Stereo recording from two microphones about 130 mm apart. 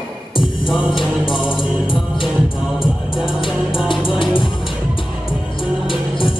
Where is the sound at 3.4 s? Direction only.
40° left (ahead or behind).